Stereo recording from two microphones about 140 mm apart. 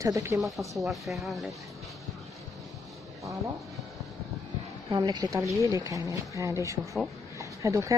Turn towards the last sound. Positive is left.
turn(degrees=-20)  # may be behind; listen again after turning